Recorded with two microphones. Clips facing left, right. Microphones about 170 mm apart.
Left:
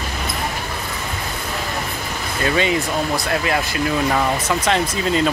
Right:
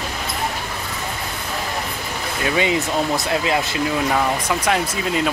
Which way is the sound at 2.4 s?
15° right (ahead or behind).